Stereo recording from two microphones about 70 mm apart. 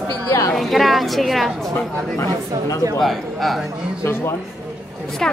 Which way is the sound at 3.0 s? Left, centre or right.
Centre.